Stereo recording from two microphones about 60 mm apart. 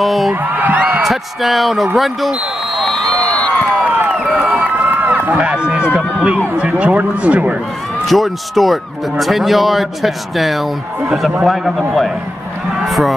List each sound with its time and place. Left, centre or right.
0.0 s a man's voice: centre
0.4 s music: right
1.0 s a man's voice: centre
3.7 s a sound: right
4.4 s run: right
6.6 s speech: right
8.1 s a man's voice: centre
12.8 s a sound: centre